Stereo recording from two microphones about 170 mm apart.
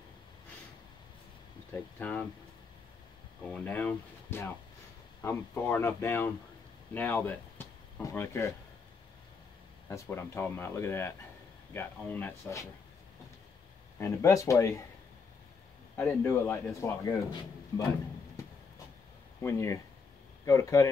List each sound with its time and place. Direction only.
2.0 s a man's voice: 10° left (ahead or behind)
3.5 s a man's voice: 10° left (ahead or behind)
9.8 s a man's voice: 15° left (ahead or behind)
13.9 s a man's voice: 15° left (ahead or behind)
16.0 s a man's voice: 10° left (ahead or behind)
19.4 s a man's voice: 15° left (ahead or behind)